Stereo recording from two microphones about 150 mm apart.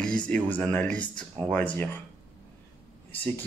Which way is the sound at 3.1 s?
10° left (ahead or behind).